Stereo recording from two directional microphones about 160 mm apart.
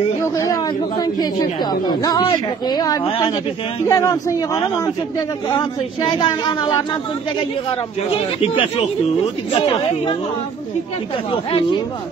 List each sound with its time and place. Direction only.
0.2 s a man's voice: 20° left (ahead or behind)
6.0 s a man's voice: 30° left (ahead or behind)
8.1 s speech: 35° left (ahead or behind)